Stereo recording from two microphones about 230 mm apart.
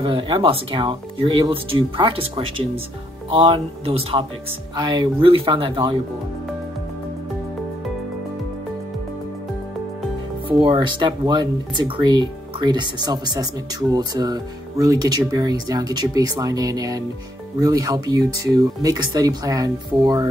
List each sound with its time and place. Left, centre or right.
0.0 s speech: right
10.6 s speech: right